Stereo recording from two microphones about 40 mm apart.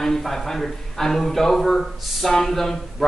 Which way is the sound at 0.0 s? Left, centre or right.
Centre.